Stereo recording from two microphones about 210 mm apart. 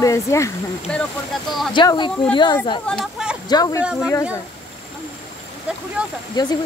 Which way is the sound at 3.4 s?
20° left (ahead or behind).